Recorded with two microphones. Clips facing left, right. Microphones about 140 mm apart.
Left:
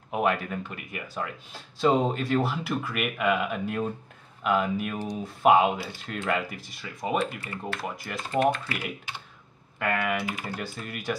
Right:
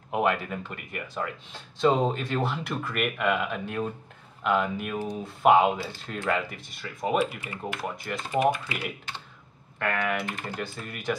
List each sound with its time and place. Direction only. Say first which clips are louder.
0.1 s speech: even; centre (ahead or behind)
7.3 s speech: even; 15° right (ahead or behind)
7.8 s speech: right 1 dB; centre (ahead or behind)
8.3 s speech: even; 10° right (ahead or behind)
9.8 s speech: left 1 dB; 5° left (ahead or behind)